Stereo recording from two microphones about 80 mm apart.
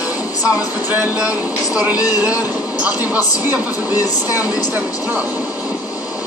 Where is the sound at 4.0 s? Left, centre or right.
Left.